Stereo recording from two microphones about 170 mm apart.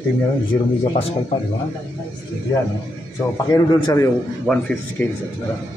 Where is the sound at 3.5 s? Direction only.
25° left (ahead or behind).